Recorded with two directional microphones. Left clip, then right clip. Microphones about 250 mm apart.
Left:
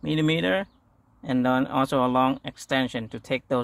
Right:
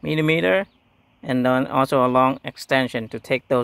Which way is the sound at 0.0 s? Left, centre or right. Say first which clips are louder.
Right 5 dB; right.